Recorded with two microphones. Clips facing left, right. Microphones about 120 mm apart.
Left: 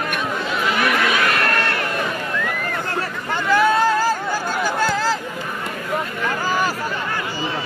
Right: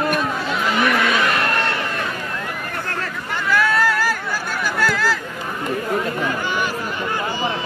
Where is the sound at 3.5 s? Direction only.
20° left (ahead or behind).